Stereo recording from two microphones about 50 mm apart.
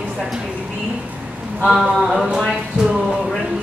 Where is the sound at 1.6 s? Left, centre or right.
Centre.